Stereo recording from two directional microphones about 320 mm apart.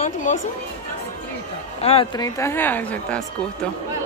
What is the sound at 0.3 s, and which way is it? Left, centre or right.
Speech, left.